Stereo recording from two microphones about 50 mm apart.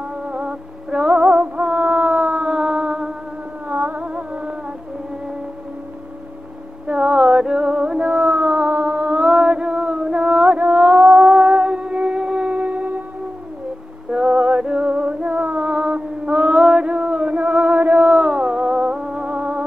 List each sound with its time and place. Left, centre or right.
0.3 s music: centre
3.6 s music: right
6.9 s music: right
10.1 s a sound: right
11.1 s music: right
14.1 s music: centre; by 15.6 s right
15.6 s a sound: right
17.4 s music: right